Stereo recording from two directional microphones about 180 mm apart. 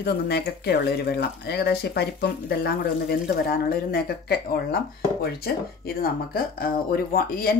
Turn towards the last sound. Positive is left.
turn(degrees=55)  # may be behind; listen again after turning